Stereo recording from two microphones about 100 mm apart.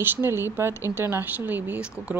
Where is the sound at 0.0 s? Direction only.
20° right (ahead or behind).